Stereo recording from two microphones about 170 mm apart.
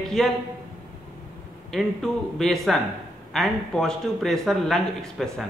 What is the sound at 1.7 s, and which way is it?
A man's voice, centre (ahead or behind).